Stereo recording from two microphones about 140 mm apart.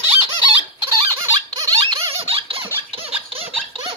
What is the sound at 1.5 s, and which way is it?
Squeak, 25° right (ahead or behind).